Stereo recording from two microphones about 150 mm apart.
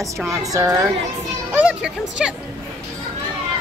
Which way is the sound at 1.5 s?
10° right (ahead or behind).